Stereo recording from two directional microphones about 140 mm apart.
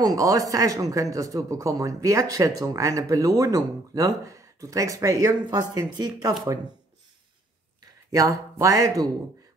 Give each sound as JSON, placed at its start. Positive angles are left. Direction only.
{"t": 0.0, "sound": "speech", "side_deg": -25}
{"t": 8.1, "sound": "speech", "side_deg": -25}